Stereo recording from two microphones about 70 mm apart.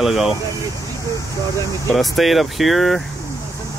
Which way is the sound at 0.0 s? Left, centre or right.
Centre.